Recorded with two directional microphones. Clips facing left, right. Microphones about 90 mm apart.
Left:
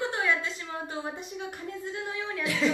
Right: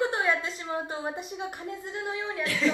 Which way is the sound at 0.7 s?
20° right (ahead or behind).